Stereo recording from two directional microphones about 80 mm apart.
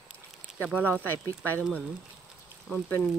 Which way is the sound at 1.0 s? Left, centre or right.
Left.